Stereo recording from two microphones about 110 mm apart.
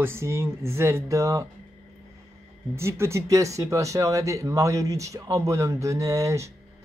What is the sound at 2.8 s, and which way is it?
Speech, 25° right (ahead or behind).